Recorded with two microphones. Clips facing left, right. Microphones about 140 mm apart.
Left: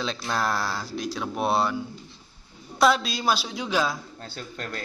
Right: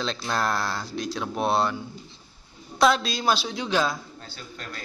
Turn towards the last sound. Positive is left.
turn(degrees=50)  # may be behind; listen again after turning